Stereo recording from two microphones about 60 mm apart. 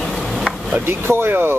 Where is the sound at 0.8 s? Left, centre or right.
Right.